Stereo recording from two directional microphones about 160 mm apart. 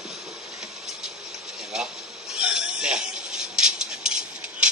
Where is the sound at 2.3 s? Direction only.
5° right (ahead or behind).